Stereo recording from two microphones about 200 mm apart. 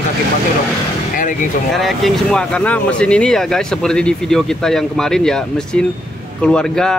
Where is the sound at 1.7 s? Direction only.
Centre (ahead or behind).